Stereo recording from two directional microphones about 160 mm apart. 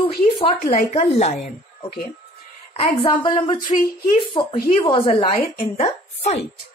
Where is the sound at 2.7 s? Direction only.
40° left (ahead or behind).